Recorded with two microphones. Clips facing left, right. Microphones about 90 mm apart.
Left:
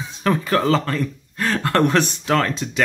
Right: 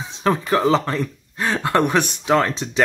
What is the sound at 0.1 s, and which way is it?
Speech, 20° right (ahead or behind).